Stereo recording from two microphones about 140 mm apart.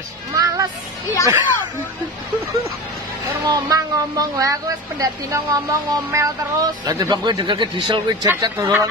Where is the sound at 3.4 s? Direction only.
25° right (ahead or behind).